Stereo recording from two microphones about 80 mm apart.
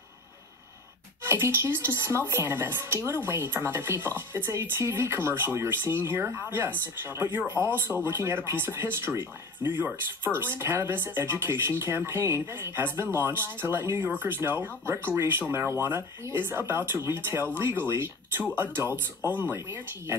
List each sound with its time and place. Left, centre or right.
1.2 s a woman's voice: right